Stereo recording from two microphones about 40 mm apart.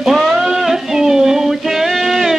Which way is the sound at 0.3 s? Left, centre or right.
Centre.